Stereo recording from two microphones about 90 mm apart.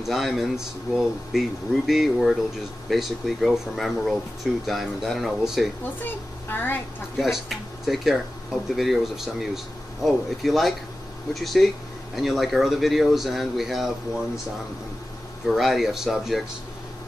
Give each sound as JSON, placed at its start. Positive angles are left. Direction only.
{"t": 0.0, "sound": "speech", "side_deg": 0}
{"t": 6.0, "sound": "speech", "side_deg": 25}
{"t": 7.2, "sound": "speech", "side_deg": -5}
{"t": 15.4, "sound": "speech", "side_deg": 0}